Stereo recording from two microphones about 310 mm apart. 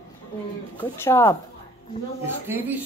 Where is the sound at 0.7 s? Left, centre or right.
Centre.